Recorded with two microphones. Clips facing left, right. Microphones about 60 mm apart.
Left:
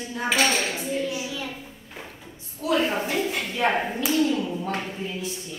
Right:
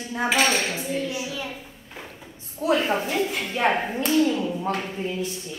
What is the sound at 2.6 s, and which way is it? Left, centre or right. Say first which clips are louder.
A woman's voice: right 1 dB; right.